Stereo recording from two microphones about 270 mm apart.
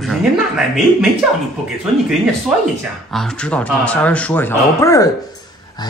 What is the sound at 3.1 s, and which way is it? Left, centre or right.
A man's voice, centre.